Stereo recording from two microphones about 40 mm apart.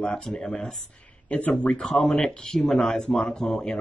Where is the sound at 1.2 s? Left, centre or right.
Left.